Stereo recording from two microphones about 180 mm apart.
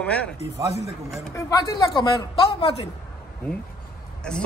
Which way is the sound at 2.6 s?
35° left (ahead or behind).